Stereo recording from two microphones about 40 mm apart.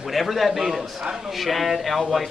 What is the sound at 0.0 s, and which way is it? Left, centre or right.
Speech, centre.